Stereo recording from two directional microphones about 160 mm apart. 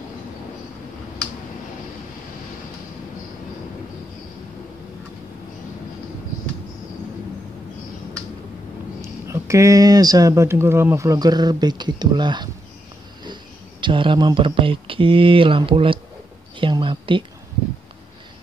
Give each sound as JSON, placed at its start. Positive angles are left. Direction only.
{"t": 9.0, "sound": "speech", "side_deg": -20}